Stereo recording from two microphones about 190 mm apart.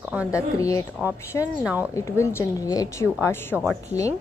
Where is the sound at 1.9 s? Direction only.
15° left (ahead or behind).